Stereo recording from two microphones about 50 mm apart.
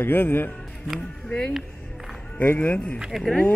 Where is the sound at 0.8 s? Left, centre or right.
Centre.